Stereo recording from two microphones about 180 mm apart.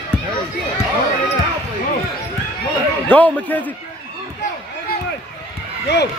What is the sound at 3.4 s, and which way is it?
Speech, 10° left (ahead or behind).